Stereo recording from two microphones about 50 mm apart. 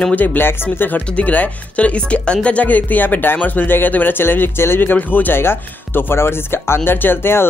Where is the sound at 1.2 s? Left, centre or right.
Left.